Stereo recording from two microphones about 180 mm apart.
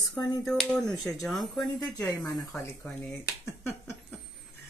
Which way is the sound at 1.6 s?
15° left (ahead or behind).